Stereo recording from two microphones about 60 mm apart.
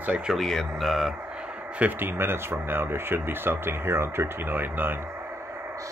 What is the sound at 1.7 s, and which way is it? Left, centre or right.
Speech, right.